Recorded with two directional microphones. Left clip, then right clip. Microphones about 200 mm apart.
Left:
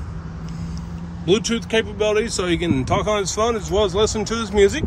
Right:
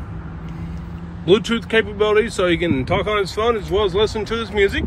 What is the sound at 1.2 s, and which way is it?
Speech, 10° left (ahead or behind).